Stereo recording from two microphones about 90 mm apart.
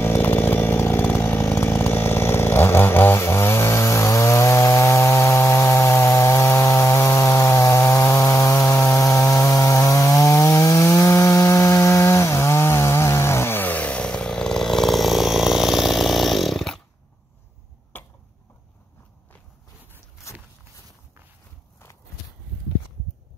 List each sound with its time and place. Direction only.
0.0 s chainsaw: 25° left (ahead or behind); by 16.8 s 5° left (ahead or behind)